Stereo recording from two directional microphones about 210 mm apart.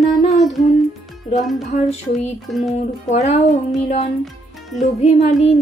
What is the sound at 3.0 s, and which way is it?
Music, 30° left (ahead or behind).